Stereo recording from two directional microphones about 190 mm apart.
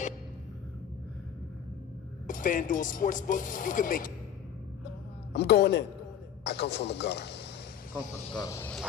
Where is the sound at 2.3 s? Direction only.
45° left (ahead or behind).